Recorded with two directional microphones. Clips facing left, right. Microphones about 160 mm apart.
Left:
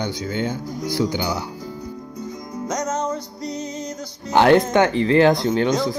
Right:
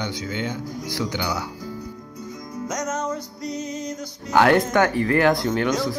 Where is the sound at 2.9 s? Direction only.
35° left (ahead or behind).